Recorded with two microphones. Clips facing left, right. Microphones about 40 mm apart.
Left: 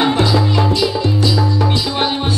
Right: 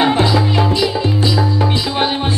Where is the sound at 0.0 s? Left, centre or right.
Right.